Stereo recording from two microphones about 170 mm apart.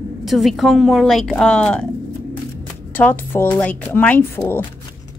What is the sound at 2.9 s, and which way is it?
Speech, 10° left (ahead or behind).